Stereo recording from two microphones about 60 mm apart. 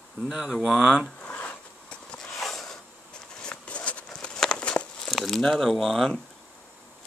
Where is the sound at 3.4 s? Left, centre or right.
Centre.